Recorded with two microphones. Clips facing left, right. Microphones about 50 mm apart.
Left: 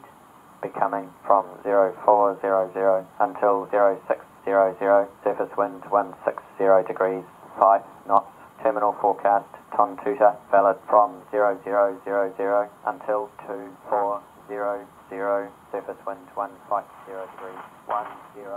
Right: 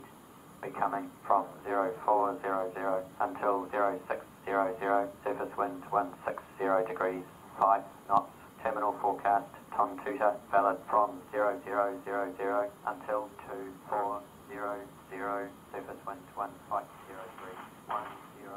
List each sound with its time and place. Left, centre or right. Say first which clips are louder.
0.6 s speech: left 8 dB; left
8.8 s speech: left 7 dB; left
16.7 s speech: left 10 dB; left